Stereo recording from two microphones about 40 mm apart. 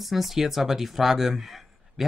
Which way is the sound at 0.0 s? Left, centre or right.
Centre.